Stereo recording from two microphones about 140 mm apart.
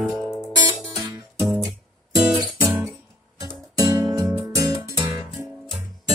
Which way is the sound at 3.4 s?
30° right (ahead or behind).